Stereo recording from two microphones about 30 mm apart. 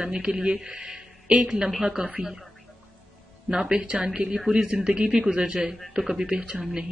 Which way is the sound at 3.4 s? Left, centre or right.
Right.